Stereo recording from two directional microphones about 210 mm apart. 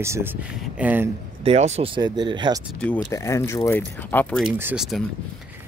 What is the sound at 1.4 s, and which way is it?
Speech, 30° right (ahead or behind).